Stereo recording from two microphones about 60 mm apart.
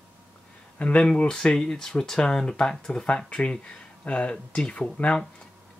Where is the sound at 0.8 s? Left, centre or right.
Centre.